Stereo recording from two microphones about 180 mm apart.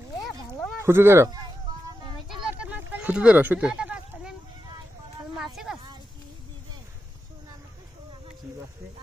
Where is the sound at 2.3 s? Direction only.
10° right (ahead or behind).